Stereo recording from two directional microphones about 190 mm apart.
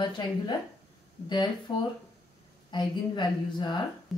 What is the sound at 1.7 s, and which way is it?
A woman's voice, 20° left (ahead or behind).